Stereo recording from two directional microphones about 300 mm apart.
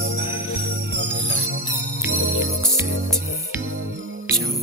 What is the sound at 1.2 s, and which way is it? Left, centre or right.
Music, right.